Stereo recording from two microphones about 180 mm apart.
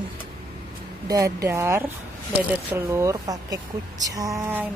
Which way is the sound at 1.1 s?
20° right (ahead or behind).